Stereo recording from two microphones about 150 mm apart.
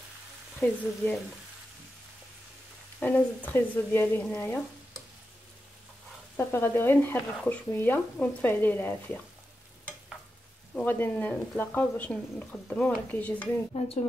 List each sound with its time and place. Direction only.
0.6 s speech: 15° left (ahead or behind)
3.0 s speech: 15° left (ahead or behind)
6.3 s speech: 15° left (ahead or behind)
10.7 s speech: 10° left (ahead or behind)